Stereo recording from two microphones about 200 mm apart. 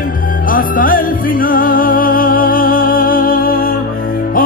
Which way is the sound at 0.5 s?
45° left (ahead or behind).